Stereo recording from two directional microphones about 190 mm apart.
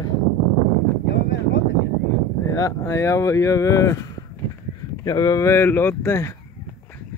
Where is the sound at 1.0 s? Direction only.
65° left (ahead or behind).